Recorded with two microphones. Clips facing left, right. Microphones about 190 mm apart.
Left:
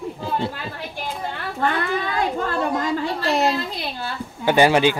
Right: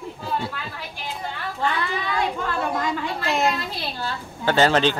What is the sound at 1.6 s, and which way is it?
Speech, 50° left (ahead or behind).